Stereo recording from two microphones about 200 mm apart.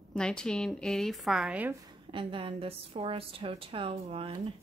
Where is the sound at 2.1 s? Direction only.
25° right (ahead or behind).